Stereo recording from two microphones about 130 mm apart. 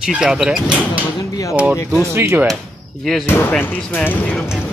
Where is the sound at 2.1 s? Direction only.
20° right (ahead or behind).